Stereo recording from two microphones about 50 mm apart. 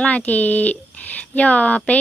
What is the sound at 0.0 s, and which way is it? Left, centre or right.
Speech, left.